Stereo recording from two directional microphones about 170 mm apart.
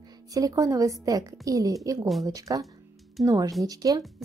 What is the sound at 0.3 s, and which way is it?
A woman's voice, 20° right (ahead or behind).